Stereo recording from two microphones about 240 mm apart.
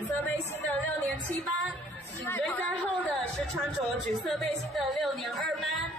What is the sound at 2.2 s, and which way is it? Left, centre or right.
A woman's voice, centre.